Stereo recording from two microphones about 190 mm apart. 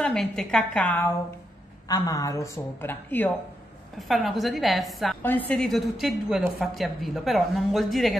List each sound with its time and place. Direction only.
0.0 s a woman's voice: centre (ahead or behind)
1.9 s a woman's voice: 20° left (ahead or behind)
4.1 s a woman's voice: centre (ahead or behind)